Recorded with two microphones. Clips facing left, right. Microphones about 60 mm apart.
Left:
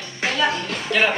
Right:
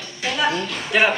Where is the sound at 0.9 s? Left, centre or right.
Centre.